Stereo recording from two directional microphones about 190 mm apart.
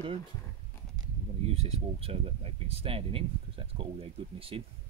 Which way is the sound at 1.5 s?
35° right (ahead or behind).